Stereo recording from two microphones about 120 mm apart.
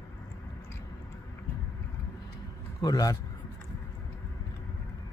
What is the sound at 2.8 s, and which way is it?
Speech, 30° left (ahead or behind).